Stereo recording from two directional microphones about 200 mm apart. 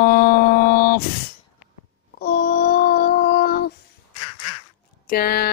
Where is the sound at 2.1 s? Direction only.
50° left (ahead or behind).